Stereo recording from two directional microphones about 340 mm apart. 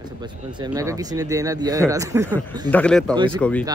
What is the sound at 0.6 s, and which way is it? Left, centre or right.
Speech, centre.